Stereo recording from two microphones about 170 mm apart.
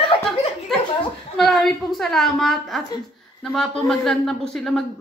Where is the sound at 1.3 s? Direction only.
Centre (ahead or behind).